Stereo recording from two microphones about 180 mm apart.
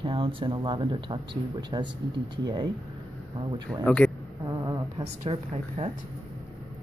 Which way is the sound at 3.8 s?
5° left (ahead or behind).